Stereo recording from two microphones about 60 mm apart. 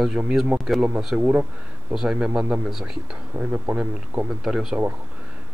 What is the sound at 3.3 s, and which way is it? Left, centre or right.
Speech, right.